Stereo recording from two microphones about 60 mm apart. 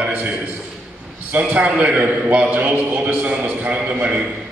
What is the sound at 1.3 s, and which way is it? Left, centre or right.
A man's voice, right.